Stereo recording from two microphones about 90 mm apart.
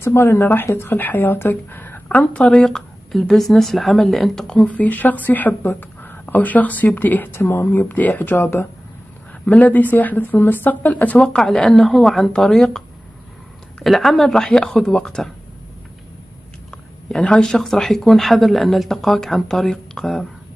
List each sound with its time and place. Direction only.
0.0 s a woman's voice: 30° left (ahead or behind); by 4.6 s 5° left (ahead or behind)
4.6 s a woman's voice: 15° left (ahead or behind)
13.8 s speech: centre (ahead or behind)
17.1 s speech: 10° left (ahead or behind)